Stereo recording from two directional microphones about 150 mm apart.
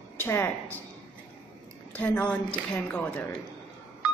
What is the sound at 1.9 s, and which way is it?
A woman's voice, 10° left (ahead or behind).